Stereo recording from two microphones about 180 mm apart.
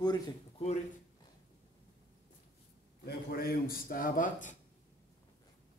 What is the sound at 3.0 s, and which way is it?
A man's voice, 60° left (ahead or behind).